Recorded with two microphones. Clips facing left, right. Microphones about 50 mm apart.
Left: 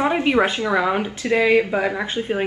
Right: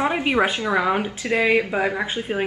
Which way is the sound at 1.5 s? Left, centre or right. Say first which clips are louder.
Left 2 dB; centre.